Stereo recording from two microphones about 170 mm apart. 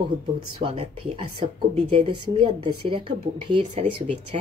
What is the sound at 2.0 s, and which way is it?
A woman's voice, 30° right (ahead or behind).